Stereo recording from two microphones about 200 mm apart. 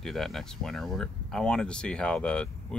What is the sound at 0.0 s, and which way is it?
Speech, centre (ahead or behind).